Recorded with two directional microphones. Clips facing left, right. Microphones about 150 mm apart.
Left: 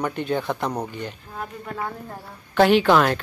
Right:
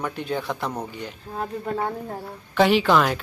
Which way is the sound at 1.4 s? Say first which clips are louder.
Right 5 dB; 30° right (ahead or behind).